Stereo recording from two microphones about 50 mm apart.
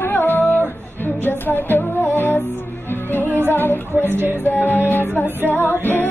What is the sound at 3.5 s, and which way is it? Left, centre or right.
Music, left.